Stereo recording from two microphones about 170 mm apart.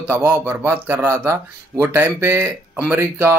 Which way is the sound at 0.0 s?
10° right (ahead or behind).